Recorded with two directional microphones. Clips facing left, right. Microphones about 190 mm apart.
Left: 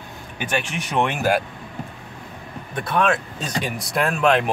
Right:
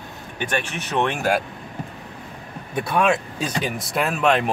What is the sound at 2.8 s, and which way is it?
Speech, 10° right (ahead or behind).